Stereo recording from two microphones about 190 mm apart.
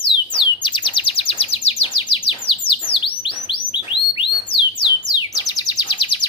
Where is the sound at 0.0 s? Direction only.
25° left (ahead or behind).